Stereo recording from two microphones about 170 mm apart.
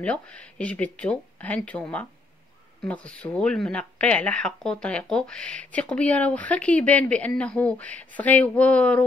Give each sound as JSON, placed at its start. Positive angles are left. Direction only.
{"t": 0.0, "sound": "speech", "side_deg": 5}